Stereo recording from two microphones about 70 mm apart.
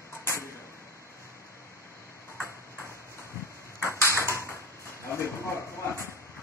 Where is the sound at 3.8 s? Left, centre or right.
Left.